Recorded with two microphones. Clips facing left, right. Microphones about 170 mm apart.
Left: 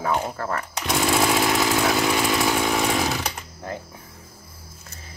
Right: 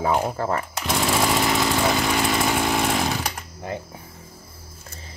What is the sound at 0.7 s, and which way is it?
Chainsaw, centre (ahead or behind).